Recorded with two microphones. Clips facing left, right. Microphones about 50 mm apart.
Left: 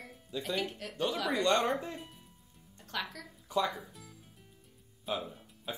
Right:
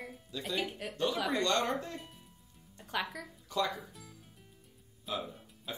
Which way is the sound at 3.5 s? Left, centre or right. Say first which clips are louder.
Left 2 dB; left.